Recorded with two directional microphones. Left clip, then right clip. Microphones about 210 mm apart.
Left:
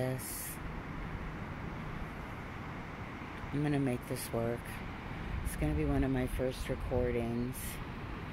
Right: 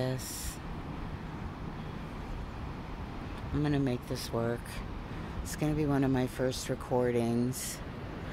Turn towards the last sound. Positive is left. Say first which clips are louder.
# right 5 dB
turn(degrees=-15)  # may be behind; listen again after turning